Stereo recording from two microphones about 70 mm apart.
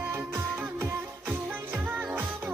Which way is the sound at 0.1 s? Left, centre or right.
Right.